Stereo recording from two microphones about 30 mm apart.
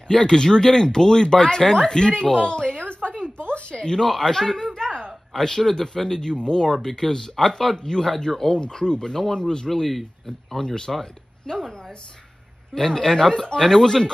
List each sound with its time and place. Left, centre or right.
0.1 s speech: centre; by 3.3 s left
3.4 s a sound: left
3.9 s speech: centre
4.7 s a sound: left
5.3 s speech: centre
6.7 s speech: centre
8.5 s speech: left
9.7 s speech: centre
10.6 s speech: centre
12.7 s speech: centre
13.7 s speech: centre